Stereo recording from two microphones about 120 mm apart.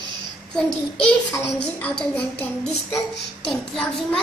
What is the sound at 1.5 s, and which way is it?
Speech, 10° left (ahead or behind).